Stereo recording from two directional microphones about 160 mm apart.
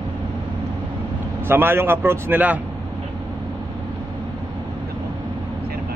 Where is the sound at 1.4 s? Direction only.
15° right (ahead or behind).